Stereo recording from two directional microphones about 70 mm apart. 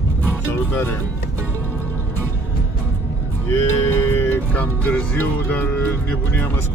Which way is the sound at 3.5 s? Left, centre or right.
Left.